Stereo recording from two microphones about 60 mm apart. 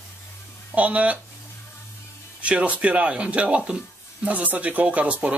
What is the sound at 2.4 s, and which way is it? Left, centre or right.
Speech, right.